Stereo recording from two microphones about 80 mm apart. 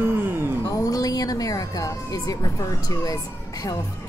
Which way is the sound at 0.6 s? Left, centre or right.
Left.